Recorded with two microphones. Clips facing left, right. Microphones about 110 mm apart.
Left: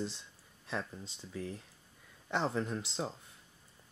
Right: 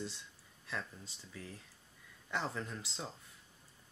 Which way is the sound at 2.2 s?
25° left (ahead or behind).